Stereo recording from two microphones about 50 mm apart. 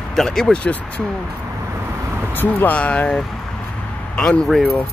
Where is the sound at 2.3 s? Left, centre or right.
Left.